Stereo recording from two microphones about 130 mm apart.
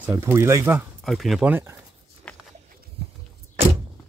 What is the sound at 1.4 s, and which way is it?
Speech, 15° right (ahead or behind).